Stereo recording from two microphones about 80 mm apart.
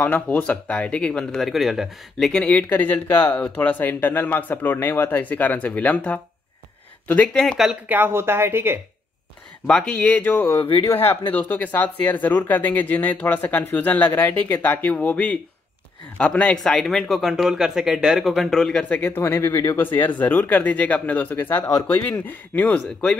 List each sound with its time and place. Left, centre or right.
0.0 s speech: centre
1.5 s speech: centre
2.7 s speech: left
7.9 s a woman's voice: right
9.7 s speech: centre
16.5 s speech: centre
19.0 s speech: left
19.8 s speech: left